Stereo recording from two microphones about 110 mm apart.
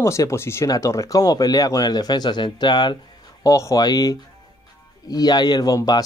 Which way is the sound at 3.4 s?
30° left (ahead or behind).